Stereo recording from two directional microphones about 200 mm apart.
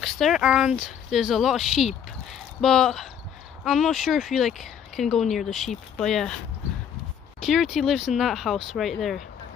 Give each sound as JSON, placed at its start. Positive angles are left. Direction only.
{"t": 0.0, "sound": "speech", "side_deg": 0}
{"t": 7.4, "sound": "speech", "side_deg": 0}